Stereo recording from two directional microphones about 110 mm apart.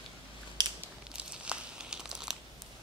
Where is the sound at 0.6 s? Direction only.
40° right (ahead or behind).